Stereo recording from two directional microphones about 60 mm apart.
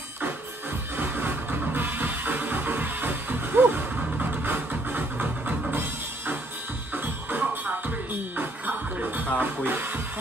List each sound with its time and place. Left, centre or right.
0.9 s music: right
6.9 s music: right